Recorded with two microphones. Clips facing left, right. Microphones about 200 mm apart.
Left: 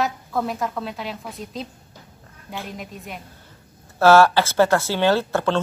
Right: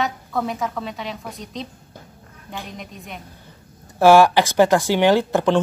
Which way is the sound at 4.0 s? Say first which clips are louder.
Right 2 dB; 15° right (ahead or behind).